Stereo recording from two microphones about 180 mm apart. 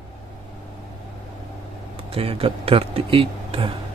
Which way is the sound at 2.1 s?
30° right (ahead or behind).